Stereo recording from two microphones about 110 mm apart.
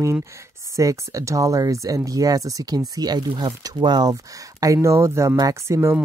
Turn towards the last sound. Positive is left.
turn(degrees=-25)  # may be behind; listen again after turning